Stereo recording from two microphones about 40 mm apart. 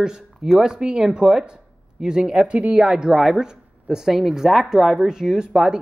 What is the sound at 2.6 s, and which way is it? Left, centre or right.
Speech, right.